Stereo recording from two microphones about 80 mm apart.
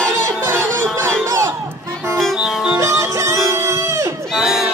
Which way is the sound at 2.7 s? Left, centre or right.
Right.